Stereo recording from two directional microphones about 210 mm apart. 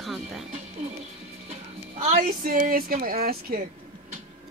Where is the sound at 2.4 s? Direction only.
45° right (ahead or behind).